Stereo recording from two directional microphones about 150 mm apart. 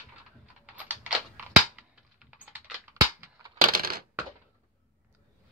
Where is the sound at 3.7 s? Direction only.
75° right (ahead or behind).